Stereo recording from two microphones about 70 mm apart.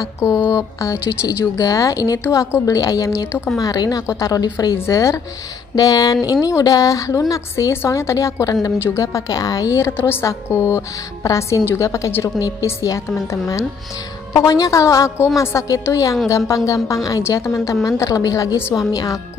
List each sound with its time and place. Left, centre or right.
0.5 s speech: left
4.7 s a woman's voice: left
5.8 s a woman's voice: left
8.7 s a woman's voice: left
9.0 s a woman's voice: left
11.2 s a woman's voice: left